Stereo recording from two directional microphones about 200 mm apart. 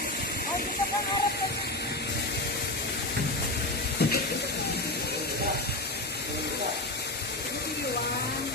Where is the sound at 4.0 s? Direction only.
55° left (ahead or behind).